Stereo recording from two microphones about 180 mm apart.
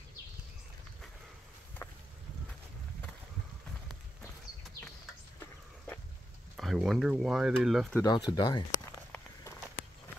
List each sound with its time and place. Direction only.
6.5 s speech: centre (ahead or behind)
7.9 s speech: 20° left (ahead or behind)